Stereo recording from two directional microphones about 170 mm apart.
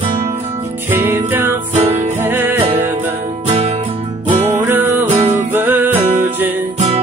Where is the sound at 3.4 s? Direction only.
40° right (ahead or behind).